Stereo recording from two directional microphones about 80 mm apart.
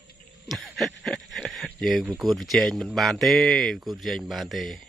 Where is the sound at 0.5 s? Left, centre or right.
Centre.